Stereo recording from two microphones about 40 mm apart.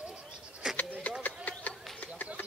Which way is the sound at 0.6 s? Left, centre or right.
Centre.